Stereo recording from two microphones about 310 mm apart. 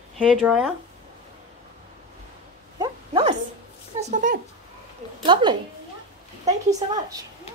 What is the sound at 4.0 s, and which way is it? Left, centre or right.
A woman's voice, right.